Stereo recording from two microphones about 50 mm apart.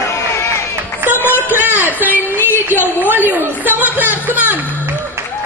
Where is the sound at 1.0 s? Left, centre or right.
Right.